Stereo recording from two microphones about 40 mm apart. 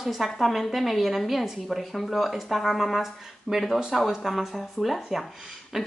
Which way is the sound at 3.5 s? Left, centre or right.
Centre.